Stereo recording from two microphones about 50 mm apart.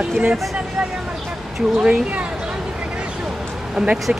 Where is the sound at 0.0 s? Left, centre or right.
Centre.